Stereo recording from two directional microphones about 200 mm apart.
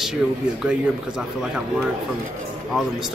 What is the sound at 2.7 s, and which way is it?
Speech, centre (ahead or behind).